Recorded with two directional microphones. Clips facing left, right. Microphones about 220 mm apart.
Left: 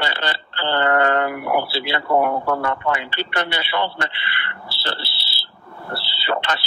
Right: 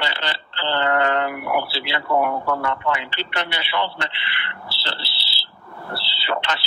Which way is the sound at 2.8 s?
50° left (ahead or behind).